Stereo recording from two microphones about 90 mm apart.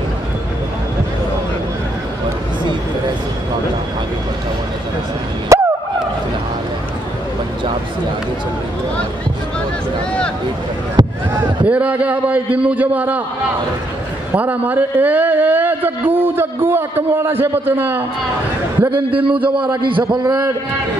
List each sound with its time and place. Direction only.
5.5 s turkey: 35° right (ahead or behind)
11.0 s a sound: 55° right (ahead or behind)
11.6 s a sound: 15° right (ahead or behind)
12.6 s a man's voice: 15° right (ahead or behind)
14.3 s speech: 20° right (ahead or behind)
19.2 s a man's voice: 70° right (ahead or behind)